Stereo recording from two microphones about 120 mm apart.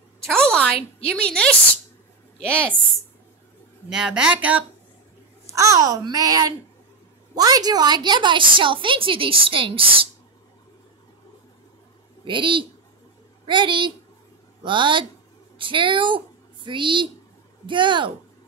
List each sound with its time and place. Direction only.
0.3 s a sound: 5° left (ahead or behind)
1.0 s a woman's voice: 10° left (ahead or behind)
3.9 s a woman's voice: 5° right (ahead or behind)
5.5 s a child's voice: 25° right (ahead or behind); by 9.9 s 50° right (ahead or behind)
12.3 s a woman's voice: 45° right (ahead or behind)